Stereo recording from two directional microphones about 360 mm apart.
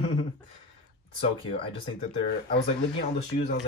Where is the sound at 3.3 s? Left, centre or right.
Left.